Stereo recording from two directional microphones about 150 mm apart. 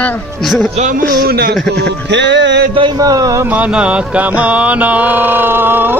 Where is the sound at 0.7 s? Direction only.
60° right (ahead or behind); by 1.6 s 90° right.